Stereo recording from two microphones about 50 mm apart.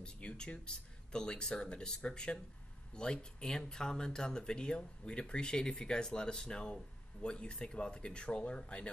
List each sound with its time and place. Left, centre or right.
0.0 s speech: left